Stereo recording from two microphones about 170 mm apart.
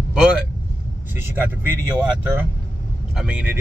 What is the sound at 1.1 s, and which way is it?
Speech, 15° right (ahead or behind).